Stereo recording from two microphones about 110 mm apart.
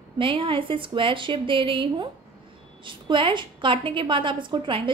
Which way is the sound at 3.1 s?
50° right (ahead or behind).